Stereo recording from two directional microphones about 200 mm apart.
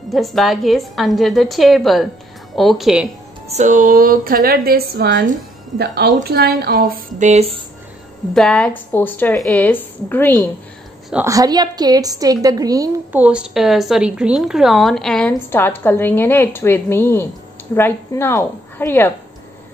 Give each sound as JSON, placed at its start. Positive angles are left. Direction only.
{"t": 0.1, "sound": "a woman's voice", "side_deg": 0}
{"t": 3.4, "sound": "a woman's voice", "side_deg": -35}
{"t": 8.4, "sound": "a woman's voice", "side_deg": 5}
{"t": 11.2, "sound": "a woman's voice", "side_deg": -20}
{"t": 13.2, "sound": "a woman's voice", "side_deg": -5}